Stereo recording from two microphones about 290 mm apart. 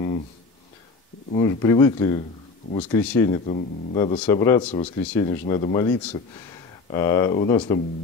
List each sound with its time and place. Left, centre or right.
1.3 s speech: centre
3.0 s speech: centre
3.3 s speech: left